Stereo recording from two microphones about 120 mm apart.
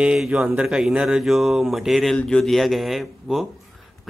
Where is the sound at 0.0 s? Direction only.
5° right (ahead or behind).